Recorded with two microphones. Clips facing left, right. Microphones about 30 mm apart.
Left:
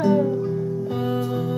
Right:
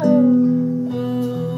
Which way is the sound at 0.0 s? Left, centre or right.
Centre.